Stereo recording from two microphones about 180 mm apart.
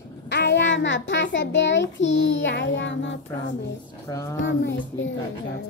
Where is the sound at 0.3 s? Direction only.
70° left (ahead or behind); by 3.5 s 90° left.